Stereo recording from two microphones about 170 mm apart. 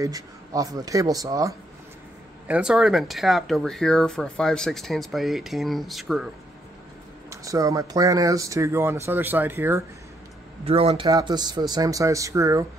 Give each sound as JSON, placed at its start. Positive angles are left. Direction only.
{"t": 0.0, "sound": "speech", "side_deg": -20}
{"t": 2.4, "sound": "speech", "side_deg": -5}
{"t": 7.2, "sound": "speech", "side_deg": -20}
{"t": 10.6, "sound": "speech", "side_deg": -35}
{"t": 11.1, "sound": "speech", "side_deg": -25}